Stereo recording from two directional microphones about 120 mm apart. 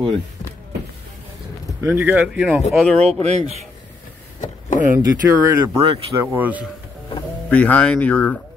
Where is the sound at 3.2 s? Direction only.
65° right (ahead or behind).